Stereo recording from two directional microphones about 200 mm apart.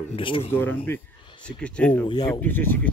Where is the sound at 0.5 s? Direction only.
10° left (ahead or behind).